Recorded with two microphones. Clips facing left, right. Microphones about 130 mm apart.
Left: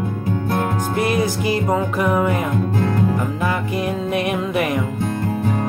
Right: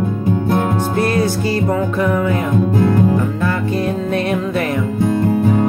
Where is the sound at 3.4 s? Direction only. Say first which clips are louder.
Right 3 dB; 15° left (ahead or behind).